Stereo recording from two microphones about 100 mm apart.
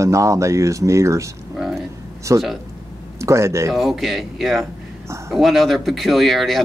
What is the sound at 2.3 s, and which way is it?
Speech, 30° right (ahead or behind).